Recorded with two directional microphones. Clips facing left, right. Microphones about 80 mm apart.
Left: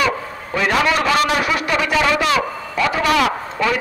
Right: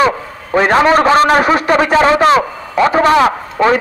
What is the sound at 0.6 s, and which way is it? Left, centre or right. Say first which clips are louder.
A man's voice: right 8 dB; right.